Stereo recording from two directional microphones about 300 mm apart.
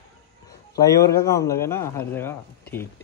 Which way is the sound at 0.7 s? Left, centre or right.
Centre.